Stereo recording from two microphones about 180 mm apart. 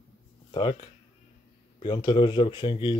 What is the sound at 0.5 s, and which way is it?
Speech, 30° left (ahead or behind).